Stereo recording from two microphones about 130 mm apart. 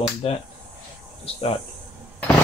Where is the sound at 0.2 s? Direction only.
45° left (ahead or behind).